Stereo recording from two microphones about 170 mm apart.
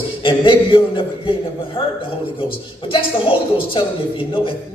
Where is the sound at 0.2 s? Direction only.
30° left (ahead or behind).